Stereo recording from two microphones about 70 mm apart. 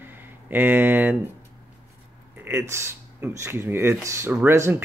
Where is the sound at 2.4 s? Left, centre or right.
Right.